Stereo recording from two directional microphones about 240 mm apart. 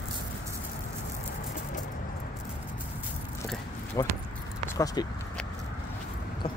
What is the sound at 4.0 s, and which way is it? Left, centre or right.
Speech, centre.